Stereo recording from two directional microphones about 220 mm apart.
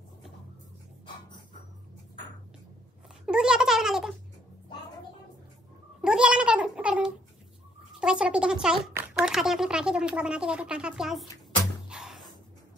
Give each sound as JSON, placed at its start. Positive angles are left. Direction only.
{"t": 3.3, "sound": "cat", "side_deg": -5}
{"t": 5.9, "sound": "cat", "side_deg": -5}
{"t": 8.0, "sound": "speech", "side_deg": -5}
{"t": 11.9, "sound": "a sound", "side_deg": 0}